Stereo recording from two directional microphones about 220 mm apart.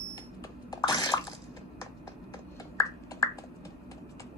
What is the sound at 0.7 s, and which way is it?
Bathtub, 15° left (ahead or behind).